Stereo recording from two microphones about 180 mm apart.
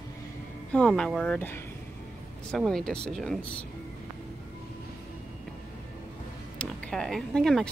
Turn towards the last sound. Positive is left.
turn(degrees=0)  # may be behind; listen again after turning